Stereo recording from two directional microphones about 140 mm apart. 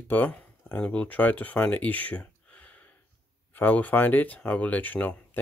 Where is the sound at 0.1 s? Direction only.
10° left (ahead or behind).